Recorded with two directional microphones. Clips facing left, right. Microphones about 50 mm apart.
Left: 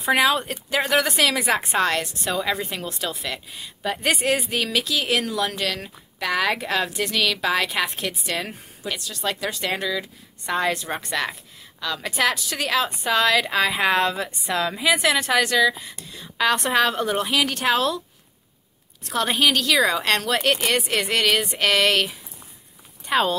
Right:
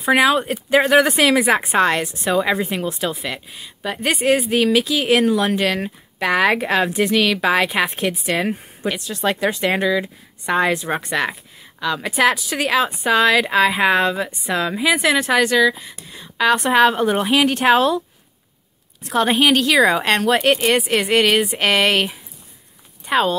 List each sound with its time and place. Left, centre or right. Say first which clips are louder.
0.0 s a woman's voice: right 4 dB; centre
16.7 s speech: right 6 dB; centre
19.0 s speech: right 5 dB; centre
23.0 s speech: right 3 dB; centre